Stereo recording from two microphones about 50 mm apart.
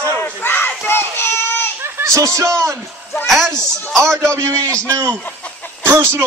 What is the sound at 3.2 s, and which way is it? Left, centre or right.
Speech, centre.